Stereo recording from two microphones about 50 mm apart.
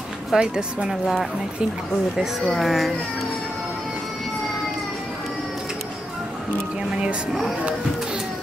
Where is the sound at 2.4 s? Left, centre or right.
Centre.